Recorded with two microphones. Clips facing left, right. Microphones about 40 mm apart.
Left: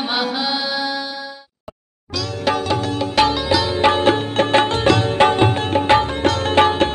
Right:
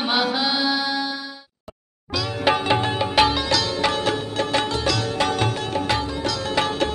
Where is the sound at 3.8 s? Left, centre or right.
Left.